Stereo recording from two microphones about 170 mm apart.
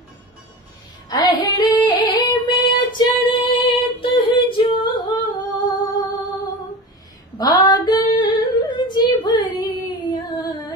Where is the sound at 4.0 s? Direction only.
30° left (ahead or behind).